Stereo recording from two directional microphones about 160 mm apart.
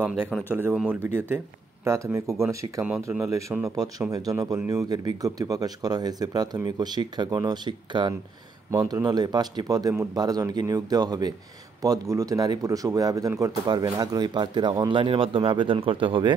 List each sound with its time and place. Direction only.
0.0 s speech: 10° right (ahead or behind); by 16.3 s 30° right (ahead or behind)